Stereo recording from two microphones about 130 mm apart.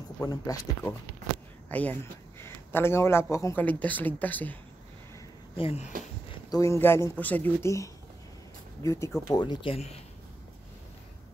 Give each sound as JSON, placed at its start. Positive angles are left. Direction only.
{"t": 0.2, "sound": "speech", "side_deg": 25}
{"t": 1.7, "sound": "speech", "side_deg": 10}
{"t": 3.6, "sound": "speech", "side_deg": 10}
{"t": 5.6, "sound": "speech", "side_deg": 50}
{"t": 6.5, "sound": "speech", "side_deg": 25}
{"t": 8.8, "sound": "speech", "side_deg": 20}
{"t": 9.3, "sound": "speech", "side_deg": 35}